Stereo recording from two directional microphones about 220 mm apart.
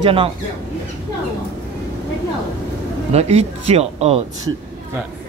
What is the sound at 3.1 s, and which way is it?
Speech, 30° right (ahead or behind).